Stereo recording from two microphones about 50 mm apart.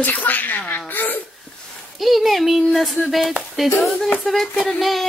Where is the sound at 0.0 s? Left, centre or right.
Left.